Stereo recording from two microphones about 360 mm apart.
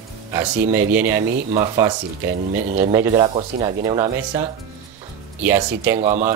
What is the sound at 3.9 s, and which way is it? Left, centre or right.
Speech, centre.